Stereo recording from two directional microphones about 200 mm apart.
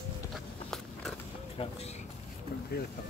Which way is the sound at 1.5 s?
30° left (ahead or behind).